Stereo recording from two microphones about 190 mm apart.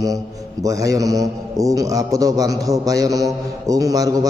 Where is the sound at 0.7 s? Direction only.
15° right (ahead or behind).